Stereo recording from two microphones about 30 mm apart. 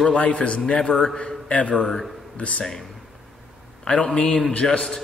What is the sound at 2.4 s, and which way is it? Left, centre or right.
Speech, left.